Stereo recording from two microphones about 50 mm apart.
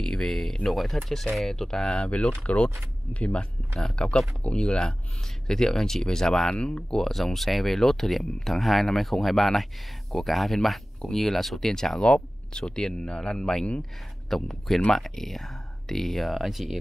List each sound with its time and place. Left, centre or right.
0.0 s speech: centre
1.9 s speech: left; by 6.5 s centre
6.5 s speech: left
7.0 s speech: centre
12.0 s speech: left; by 16.7 s centre